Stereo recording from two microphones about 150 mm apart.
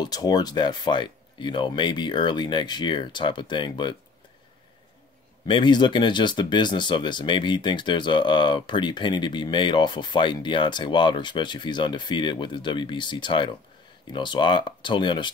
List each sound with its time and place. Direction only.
0.0 s speech: 25° left (ahead or behind)
5.5 s speech: 30° left (ahead or behind)